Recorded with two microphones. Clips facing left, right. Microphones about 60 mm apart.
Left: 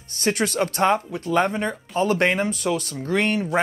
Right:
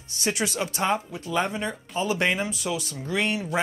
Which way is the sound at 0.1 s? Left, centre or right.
Left.